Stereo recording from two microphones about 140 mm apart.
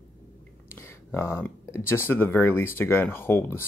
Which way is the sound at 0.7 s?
20° left (ahead or behind).